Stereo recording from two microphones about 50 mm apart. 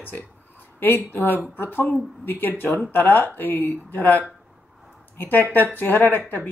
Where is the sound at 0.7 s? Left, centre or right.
Left.